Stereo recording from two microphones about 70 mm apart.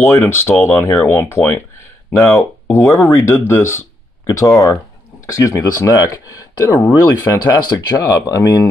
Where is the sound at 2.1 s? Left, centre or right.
Left.